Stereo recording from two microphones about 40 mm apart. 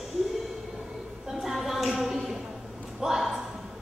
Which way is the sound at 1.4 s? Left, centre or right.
Centre.